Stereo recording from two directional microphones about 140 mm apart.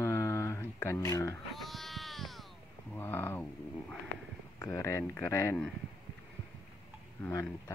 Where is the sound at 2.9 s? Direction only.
15° left (ahead or behind).